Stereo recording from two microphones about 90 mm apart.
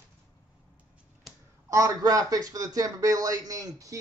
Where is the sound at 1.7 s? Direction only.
40° right (ahead or behind).